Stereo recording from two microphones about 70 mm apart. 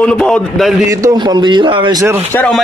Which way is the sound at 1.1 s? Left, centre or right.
Right.